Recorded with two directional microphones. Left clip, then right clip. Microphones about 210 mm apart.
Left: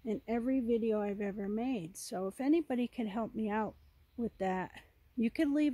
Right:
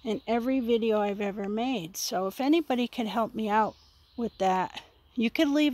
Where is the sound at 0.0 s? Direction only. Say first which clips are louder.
Right 7 dB; 10° right (ahead or behind).